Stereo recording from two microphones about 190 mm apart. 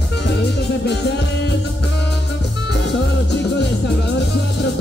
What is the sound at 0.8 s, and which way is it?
Music, 60° left (ahead or behind).